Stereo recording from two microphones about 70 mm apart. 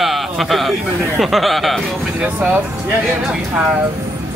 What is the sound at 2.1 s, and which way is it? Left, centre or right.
Speech, right.